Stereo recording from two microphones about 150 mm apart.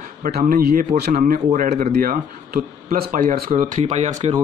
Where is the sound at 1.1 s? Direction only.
55° right (ahead or behind).